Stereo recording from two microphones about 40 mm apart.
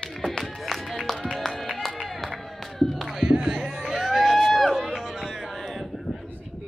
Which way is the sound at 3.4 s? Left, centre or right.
Centre.